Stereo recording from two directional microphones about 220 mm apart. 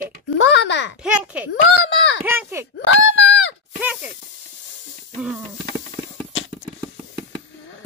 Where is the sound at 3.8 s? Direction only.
5° right (ahead or behind).